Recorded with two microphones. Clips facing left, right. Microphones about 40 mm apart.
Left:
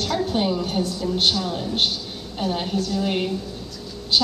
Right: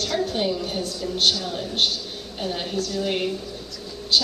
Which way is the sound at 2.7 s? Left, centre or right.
Centre.